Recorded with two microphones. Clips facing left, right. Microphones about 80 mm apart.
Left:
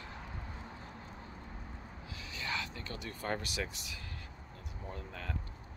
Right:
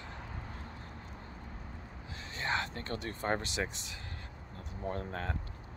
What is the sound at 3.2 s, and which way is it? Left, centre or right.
Speech, right.